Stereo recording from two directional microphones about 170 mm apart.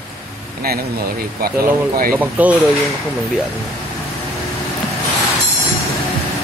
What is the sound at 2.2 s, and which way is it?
Speech, 10° right (ahead or behind).